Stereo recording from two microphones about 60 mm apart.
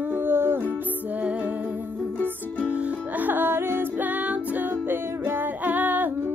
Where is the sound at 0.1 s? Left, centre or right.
Right.